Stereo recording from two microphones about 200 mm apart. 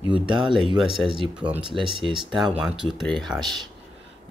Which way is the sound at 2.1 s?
Centre (ahead or behind).